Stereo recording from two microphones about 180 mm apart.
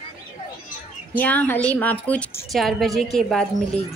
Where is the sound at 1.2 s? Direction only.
10° left (ahead or behind).